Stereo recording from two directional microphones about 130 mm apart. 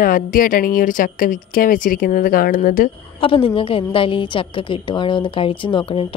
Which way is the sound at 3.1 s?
45° left (ahead or behind).